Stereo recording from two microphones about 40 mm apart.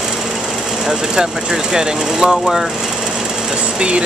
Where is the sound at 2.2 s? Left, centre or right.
Centre.